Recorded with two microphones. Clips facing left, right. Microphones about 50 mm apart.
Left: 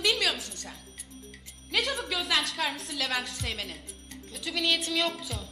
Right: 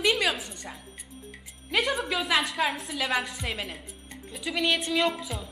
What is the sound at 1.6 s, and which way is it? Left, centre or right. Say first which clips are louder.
Speech: right 3 dB; centre.